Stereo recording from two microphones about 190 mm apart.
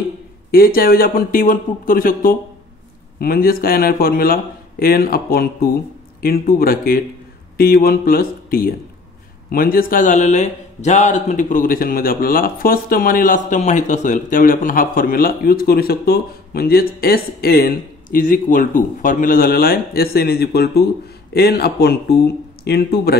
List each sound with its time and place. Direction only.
0.5 s a man's voice: 50° left (ahead or behind)